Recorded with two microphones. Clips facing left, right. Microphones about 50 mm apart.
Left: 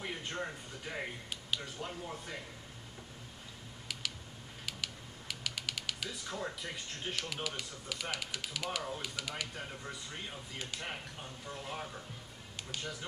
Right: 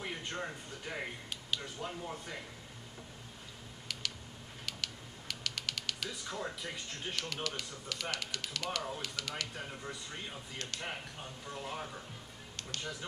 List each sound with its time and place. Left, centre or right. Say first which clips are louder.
0.0 s speech: even; centre
4.6 s speech: even; centre
9.5 s speech: right 1 dB; centre
12.7 s speech: even; centre